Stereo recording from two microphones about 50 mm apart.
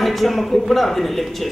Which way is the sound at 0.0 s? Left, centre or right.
Centre.